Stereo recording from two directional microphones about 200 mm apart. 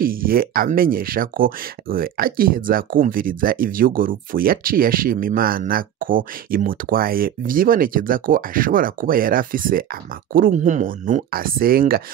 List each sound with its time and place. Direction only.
0.0 s speech: 45° right (ahead or behind)